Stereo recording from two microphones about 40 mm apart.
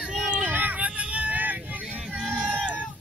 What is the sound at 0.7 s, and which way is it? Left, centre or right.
Vehicle, right.